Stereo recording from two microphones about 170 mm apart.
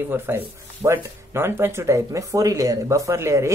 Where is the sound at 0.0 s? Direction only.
15° right (ahead or behind).